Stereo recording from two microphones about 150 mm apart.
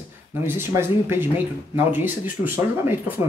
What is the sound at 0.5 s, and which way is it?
Speech, 15° right (ahead or behind).